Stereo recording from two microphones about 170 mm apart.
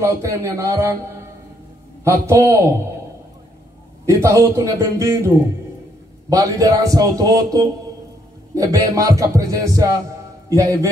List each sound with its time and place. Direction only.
0.0 s a man's voice: 15° right (ahead or behind)
4.0 s a man's voice: 15° right (ahead or behind)